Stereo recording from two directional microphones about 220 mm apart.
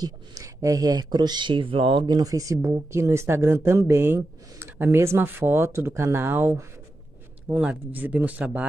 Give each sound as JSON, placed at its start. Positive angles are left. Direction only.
{"t": 0.0, "sound": "speech", "side_deg": -15}